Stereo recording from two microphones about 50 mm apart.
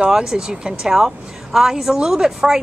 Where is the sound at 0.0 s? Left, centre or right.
Centre.